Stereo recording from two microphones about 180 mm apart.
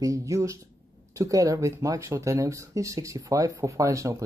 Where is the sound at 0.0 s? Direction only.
15° right (ahead or behind).